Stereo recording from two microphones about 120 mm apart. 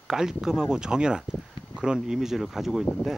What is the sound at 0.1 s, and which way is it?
Speech, 5° right (ahead or behind).